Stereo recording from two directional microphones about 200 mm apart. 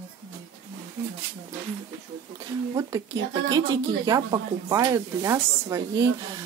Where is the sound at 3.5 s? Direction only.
20° right (ahead or behind).